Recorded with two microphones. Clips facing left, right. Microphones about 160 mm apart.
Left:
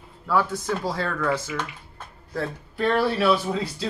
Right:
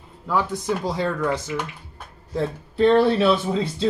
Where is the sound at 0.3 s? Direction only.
15° right (ahead or behind).